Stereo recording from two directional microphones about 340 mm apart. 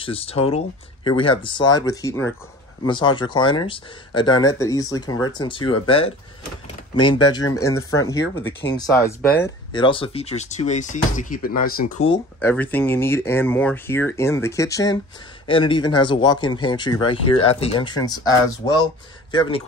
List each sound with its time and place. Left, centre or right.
0.0 s speech: centre
12.1 s speech: centre